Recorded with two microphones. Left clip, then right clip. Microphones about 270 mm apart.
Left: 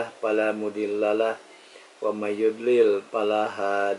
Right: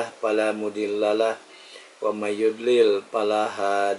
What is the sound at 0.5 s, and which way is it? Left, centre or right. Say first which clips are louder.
Speech: right 1 dB; left.